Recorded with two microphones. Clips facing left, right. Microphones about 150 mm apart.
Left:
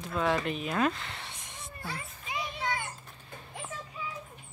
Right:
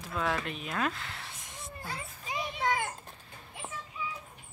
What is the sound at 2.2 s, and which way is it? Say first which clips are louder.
Children playing: right 3 dB; 35° right (ahead or behind).